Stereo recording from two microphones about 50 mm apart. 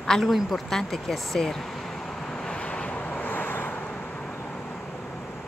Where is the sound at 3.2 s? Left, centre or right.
Left.